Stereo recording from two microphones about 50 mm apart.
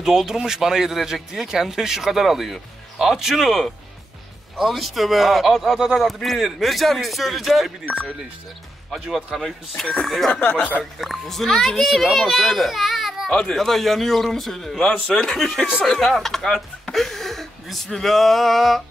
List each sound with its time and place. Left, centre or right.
0.0 s speech: centre
5.8 s speech: centre
6.0 s speech: centre
10.0 s speech: centre
10.3 s speech: left
10.8 s speech: centre
13.3 s speech: centre